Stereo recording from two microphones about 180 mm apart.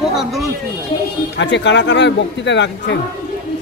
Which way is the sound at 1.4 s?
80° left.